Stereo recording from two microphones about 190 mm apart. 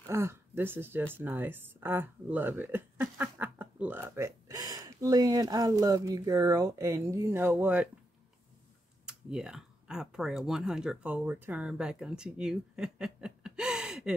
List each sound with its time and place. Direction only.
0.1 s speech: 15° right (ahead or behind)
9.0 s speech: 5° right (ahead or behind)